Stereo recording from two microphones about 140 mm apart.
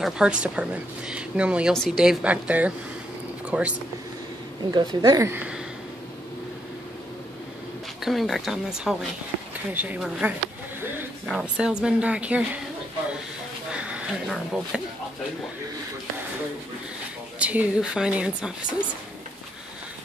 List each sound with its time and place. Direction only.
0.0 s speech: 5° right (ahead or behind)
4.6 s a woman's voice: 25° right (ahead or behind)
8.0 s a woman's voice: centre (ahead or behind)
13.7 s a sound: 10° right (ahead or behind)
17.4 s speech: 10° right (ahead or behind)